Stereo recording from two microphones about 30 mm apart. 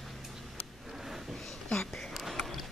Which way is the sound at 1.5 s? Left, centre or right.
Left.